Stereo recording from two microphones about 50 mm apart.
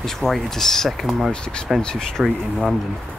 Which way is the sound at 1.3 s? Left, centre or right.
Centre.